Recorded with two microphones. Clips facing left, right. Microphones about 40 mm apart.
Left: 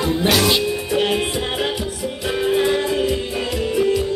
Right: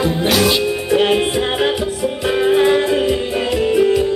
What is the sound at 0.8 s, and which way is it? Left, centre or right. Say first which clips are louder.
Music: right 5 dB; centre.